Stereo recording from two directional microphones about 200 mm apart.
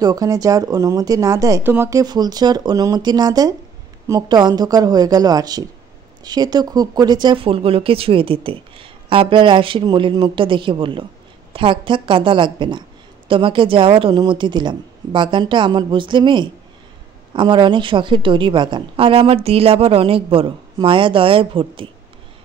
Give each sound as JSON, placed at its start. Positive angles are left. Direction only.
{"t": 0.0, "sound": "speech", "side_deg": -20}